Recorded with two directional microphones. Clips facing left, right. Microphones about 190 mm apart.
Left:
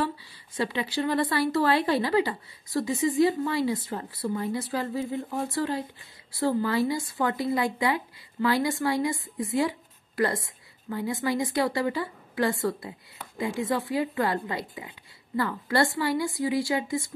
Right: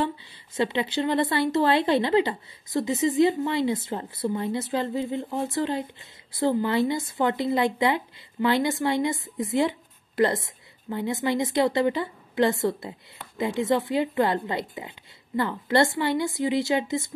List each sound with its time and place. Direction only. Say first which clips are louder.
0.0 s speech: right 2 dB; 20° right (ahead or behind)